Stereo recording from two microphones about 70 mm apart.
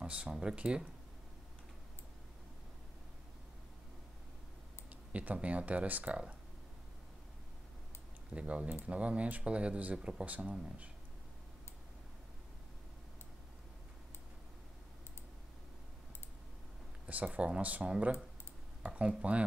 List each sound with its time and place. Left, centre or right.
0.0 s speech: centre
5.1 s speech: centre
8.4 s speech: centre
17.0 s speech: right